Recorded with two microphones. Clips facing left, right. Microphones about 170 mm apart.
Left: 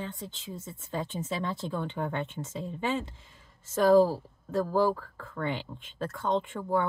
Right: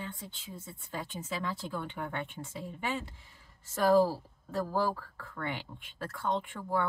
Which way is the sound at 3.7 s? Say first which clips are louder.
Left 4 dB; 20° left (ahead or behind).